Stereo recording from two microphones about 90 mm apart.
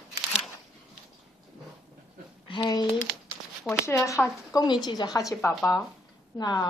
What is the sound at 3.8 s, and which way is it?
Speech, 35° left (ahead or behind).